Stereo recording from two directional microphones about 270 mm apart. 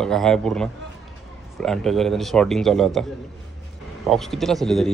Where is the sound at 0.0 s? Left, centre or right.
Centre.